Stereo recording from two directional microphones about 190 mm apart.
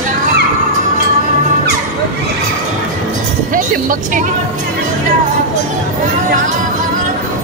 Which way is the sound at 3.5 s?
45° right (ahead or behind).